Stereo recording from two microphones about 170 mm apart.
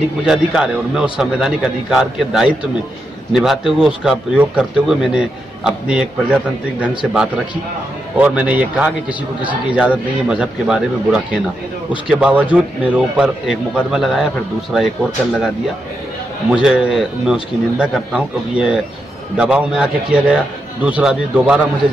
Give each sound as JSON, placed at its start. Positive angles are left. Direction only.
{"t": 0.2, "sound": "speech", "side_deg": -5}
{"t": 8.2, "sound": "a man's voice", "side_deg": -10}
{"t": 16.4, "sound": "speech", "side_deg": -5}